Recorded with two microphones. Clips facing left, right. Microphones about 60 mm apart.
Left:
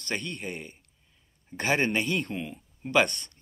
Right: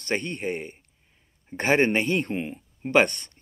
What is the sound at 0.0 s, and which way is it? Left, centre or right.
Speech, right.